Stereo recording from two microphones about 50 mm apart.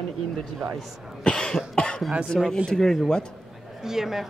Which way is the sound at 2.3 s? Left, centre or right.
Centre.